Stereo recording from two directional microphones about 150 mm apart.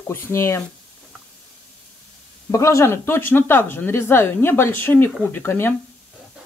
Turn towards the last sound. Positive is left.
turn(degrees=15)  # may be behind; listen again after turning